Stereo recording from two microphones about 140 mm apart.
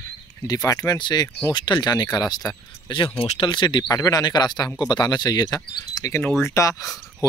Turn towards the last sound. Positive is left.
turn(degrees=25)  # may be behind; listen again after turning